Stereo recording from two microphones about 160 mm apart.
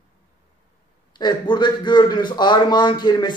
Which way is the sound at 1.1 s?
30° left (ahead or behind).